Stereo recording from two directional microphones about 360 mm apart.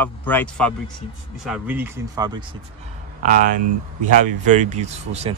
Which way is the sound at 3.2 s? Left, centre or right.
Right.